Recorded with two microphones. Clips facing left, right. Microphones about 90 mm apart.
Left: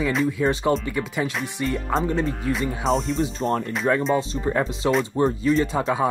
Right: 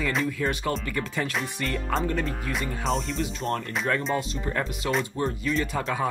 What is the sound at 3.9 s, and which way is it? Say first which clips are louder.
Speech: left 6 dB; 25° left (ahead or behind).